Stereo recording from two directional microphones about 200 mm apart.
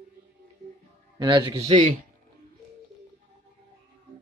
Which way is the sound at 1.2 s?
25° right (ahead or behind).